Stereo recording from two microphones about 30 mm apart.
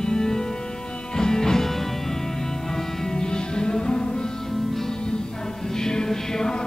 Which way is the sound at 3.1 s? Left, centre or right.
Left.